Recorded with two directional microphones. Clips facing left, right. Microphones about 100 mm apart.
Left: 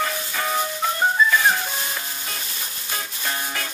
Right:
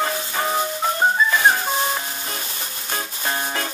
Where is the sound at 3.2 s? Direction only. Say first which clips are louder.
Right 4 dB; 30° right (ahead or behind).